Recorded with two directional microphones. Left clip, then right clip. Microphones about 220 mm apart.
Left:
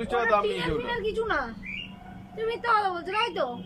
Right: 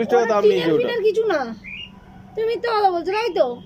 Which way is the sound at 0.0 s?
30° right (ahead or behind).